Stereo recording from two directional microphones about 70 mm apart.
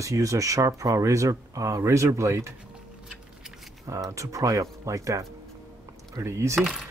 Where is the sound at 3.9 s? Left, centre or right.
Right.